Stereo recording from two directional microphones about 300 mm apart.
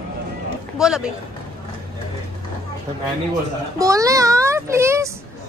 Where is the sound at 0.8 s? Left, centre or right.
Centre.